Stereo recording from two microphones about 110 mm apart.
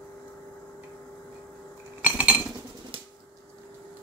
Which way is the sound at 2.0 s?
10° right (ahead or behind).